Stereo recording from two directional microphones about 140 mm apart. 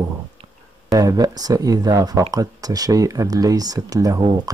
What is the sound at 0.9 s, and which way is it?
Speech, 25° right (ahead or behind).